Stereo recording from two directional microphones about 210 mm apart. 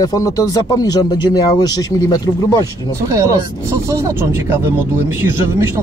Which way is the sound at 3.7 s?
15° right (ahead or behind).